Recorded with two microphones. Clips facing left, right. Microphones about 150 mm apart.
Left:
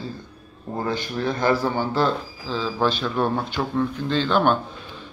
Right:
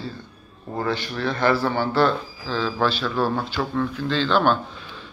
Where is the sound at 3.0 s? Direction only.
25° left (ahead or behind).